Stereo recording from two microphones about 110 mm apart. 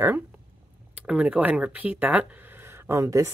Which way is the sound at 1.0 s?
10° right (ahead or behind).